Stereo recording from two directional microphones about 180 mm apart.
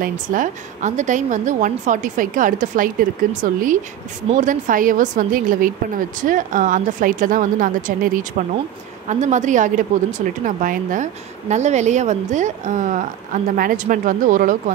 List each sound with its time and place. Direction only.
0.0 s speech: 45° right (ahead or behind)